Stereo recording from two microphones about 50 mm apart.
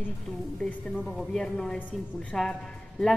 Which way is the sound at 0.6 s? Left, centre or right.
Centre.